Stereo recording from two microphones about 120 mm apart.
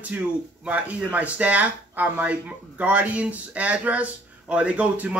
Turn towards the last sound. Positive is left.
turn(degrees=-10)  # may be behind; listen again after turning